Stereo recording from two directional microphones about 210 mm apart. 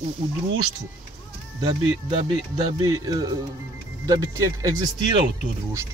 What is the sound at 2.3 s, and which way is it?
Speech, 20° right (ahead or behind).